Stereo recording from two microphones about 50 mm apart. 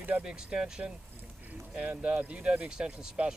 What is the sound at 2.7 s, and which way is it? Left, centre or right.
Speech, centre.